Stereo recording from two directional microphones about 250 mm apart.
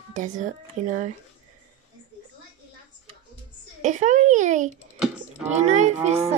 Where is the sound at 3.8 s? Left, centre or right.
Right.